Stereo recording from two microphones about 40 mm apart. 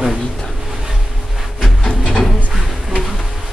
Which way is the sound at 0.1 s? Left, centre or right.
Centre.